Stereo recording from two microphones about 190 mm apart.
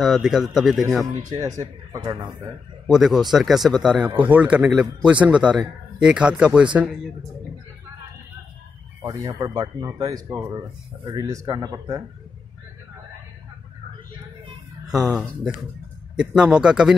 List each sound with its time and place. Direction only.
0.0 s a man's voice: centre (ahead or behind)
1.1 s speech: 15° right (ahead or behind)
2.9 s a man's voice: centre (ahead or behind)
9.0 s speech: 20° right (ahead or behind)
16.2 s a man's voice: 5° right (ahead or behind)